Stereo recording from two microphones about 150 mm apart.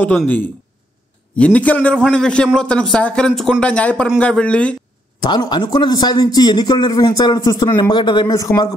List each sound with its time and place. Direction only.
1.3 s a man's voice: 10° left (ahead or behind)
5.2 s a man's voice: 30° left (ahead or behind)